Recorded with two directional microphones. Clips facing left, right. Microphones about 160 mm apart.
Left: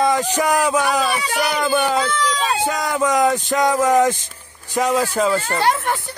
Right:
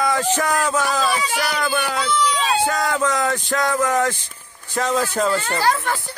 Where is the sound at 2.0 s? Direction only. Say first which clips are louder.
Even; 45° left (ahead or behind).